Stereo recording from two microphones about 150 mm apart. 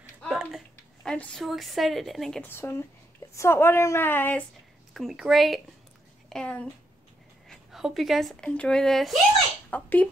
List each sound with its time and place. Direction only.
0.3 s a sound: centre (ahead or behind)
1.0 s a woman's voice: 5° left (ahead or behind)
2.4 s a woman's voice: 15° left (ahead or behind)
4.9 s a woman's voice: centre (ahead or behind)
9.7 s speech: 10° left (ahead or behind)